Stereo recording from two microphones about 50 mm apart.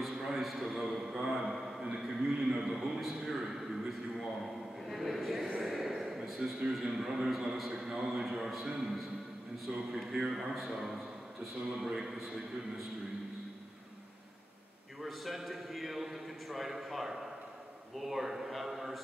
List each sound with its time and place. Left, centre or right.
0.0 s a man's voice: centre
10.3 s a man's voice: centre
15.0 s a man's voice: centre